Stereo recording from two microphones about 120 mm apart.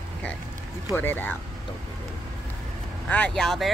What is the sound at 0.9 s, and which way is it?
Speech, 15° left (ahead or behind).